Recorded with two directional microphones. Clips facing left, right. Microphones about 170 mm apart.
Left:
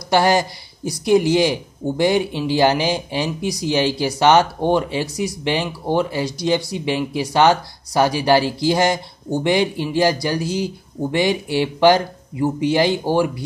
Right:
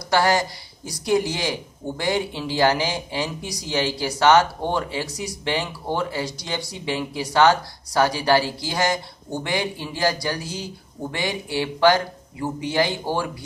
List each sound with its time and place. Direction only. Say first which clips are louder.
0.1 s speech: left 4 dB; 20° left (ahead or behind)